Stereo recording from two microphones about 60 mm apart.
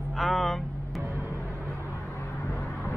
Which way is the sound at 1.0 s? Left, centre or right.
Right.